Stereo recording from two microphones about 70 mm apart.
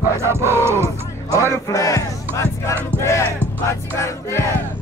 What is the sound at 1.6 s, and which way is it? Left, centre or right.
Music, left.